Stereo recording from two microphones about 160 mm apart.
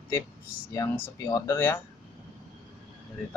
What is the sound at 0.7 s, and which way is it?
Speech, 20° left (ahead or behind).